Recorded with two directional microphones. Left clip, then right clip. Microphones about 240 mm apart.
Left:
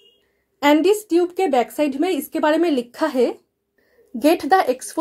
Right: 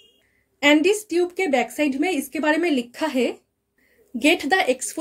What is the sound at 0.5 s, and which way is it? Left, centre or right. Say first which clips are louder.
Speech: left 2 dB; left.